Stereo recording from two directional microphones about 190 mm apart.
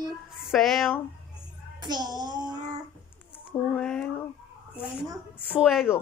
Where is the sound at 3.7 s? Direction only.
5° left (ahead or behind).